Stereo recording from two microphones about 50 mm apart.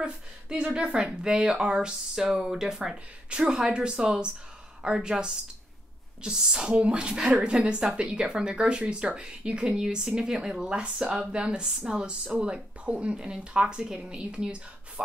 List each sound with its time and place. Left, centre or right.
0.0 s speech: centre